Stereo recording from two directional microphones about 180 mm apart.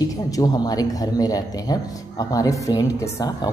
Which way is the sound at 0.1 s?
20° left (ahead or behind).